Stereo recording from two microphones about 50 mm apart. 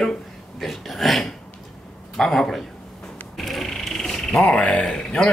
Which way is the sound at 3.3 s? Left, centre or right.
Centre.